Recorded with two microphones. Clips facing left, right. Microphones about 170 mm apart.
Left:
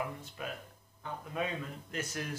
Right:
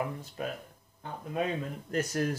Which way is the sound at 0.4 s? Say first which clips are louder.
Right 6 dB; 40° right (ahead or behind).